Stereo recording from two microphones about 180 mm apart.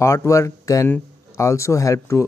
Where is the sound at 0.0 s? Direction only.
15° left (ahead or behind).